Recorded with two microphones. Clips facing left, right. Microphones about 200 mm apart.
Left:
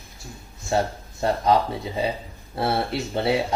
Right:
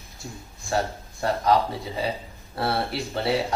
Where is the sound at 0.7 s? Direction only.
25° left (ahead or behind).